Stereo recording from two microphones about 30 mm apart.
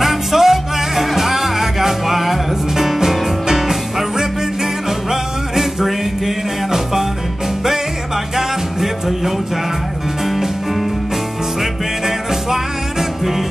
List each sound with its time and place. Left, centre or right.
0.0 s music: centre
5.1 s music: centre
8.4 s music: centre